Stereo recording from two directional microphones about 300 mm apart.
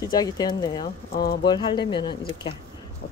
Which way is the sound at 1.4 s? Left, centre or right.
Centre.